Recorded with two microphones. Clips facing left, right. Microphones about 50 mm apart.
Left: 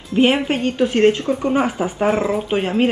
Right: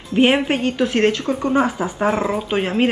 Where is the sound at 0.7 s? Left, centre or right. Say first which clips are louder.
Left 4 dB; centre.